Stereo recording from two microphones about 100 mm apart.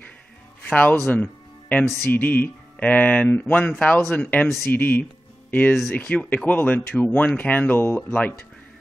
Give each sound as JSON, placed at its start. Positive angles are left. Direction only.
{"t": 0.7, "sound": "speech", "side_deg": 15}
{"t": 1.1, "sound": "music", "side_deg": 15}
{"t": 2.0, "sound": "speech", "side_deg": 20}